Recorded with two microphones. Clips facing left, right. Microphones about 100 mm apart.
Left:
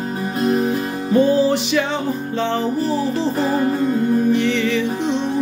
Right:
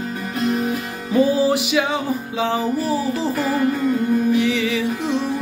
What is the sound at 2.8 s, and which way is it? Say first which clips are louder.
Music: left 1 dB; 30° left (ahead or behind).